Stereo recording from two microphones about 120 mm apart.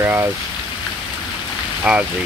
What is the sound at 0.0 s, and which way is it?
Speech, 15° right (ahead or behind).